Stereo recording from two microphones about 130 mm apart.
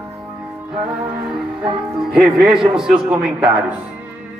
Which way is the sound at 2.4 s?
5° right (ahead or behind).